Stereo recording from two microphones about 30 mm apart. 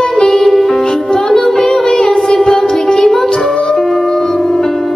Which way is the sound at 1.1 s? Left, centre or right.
Centre.